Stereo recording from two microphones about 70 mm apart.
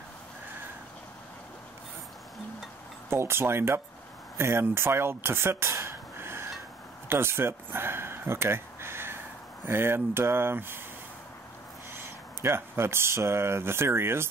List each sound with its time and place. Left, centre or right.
3.1 s speech: right
5.7 s a sound: right
9.7 s speech: right
12.4 s speech: right